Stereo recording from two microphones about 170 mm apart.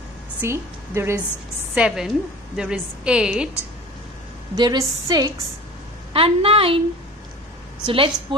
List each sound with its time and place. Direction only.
0.4 s a woman's voice: 15° right (ahead or behind)
1.8 s a woman's voice: 5° right (ahead or behind)
4.6 s a woman's voice: 20° right (ahead or behind)
6.1 s a woman's voice: 35° right (ahead or behind)
7.8 s a woman's voice: 30° right (ahead or behind)